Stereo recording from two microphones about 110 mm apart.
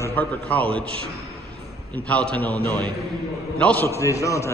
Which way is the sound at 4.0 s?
30° left (ahead or behind).